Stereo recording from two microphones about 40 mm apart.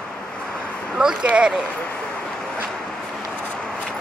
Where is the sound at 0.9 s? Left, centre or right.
Centre.